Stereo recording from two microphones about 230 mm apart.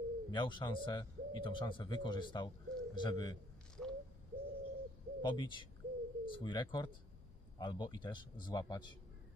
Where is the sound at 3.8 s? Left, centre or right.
Centre.